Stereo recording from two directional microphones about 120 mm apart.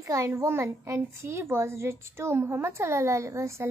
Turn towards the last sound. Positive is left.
turn(degrees=-25)  # may be behind; listen again after turning